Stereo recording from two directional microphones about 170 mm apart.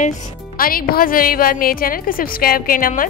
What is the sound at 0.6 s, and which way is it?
A woman's voice, 60° left (ahead or behind).